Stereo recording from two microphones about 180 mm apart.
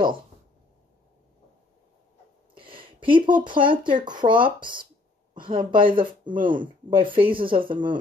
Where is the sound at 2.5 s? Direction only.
30° right (ahead or behind).